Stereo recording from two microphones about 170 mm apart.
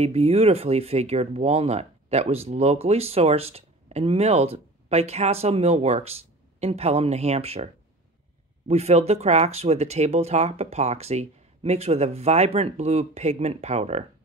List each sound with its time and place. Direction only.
0.0 s speech: 35° right (ahead or behind)